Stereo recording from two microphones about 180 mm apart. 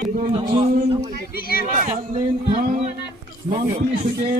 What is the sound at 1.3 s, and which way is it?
Speech, 55° left (ahead or behind).